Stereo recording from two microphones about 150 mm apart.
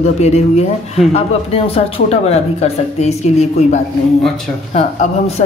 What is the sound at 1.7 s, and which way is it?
A woman's voice, 40° left (ahead or behind).